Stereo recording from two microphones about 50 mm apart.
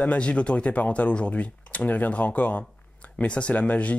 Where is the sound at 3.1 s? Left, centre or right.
Left.